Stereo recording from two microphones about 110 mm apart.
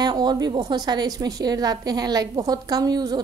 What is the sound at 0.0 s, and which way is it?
A woman's voice, 40° right (ahead or behind).